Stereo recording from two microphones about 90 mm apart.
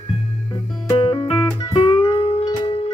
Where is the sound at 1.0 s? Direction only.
75° left (ahead or behind).